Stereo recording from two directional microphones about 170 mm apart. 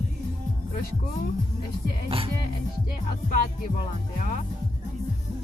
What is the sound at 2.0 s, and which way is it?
Speech, 30° right (ahead or behind).